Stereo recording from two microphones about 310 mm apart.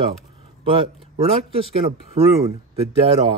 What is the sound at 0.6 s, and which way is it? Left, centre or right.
Speech, centre.